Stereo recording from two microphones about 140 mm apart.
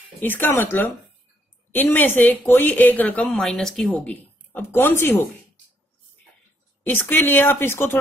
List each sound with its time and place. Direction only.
0.2 s speech: 15° left (ahead or behind)
6.9 s speech: 15° left (ahead or behind)